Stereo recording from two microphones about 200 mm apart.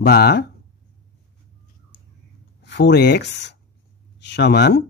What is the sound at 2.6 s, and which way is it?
Speech, 60° left (ahead or behind).